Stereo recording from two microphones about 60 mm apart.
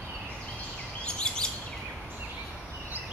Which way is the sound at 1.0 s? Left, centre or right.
Centre.